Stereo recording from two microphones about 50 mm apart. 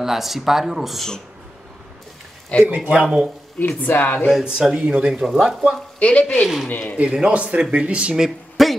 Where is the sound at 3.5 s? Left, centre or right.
Left.